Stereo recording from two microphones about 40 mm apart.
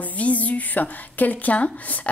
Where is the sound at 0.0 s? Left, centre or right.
Left.